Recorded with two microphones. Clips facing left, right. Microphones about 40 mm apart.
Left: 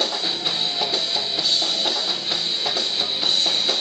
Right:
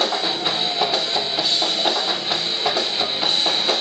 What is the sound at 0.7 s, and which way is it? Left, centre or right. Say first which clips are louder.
Music: right 3 dB; centre.